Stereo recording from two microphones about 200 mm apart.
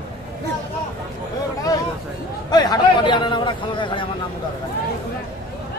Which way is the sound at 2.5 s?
20° left (ahead or behind).